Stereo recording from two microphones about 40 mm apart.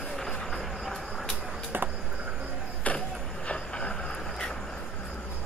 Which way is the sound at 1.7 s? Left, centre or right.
Right.